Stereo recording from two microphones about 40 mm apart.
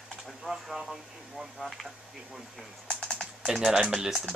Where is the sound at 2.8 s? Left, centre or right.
Centre.